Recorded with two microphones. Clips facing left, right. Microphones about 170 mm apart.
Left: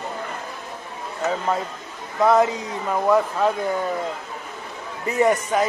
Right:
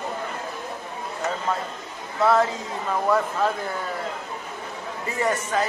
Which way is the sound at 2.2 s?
20° left (ahead or behind).